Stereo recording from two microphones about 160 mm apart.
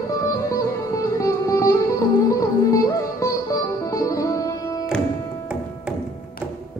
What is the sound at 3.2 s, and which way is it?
Music, 20° left (ahead or behind).